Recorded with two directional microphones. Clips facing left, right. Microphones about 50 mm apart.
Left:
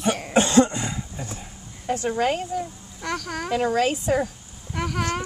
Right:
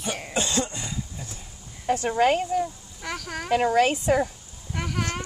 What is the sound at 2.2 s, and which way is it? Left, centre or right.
Speech, right.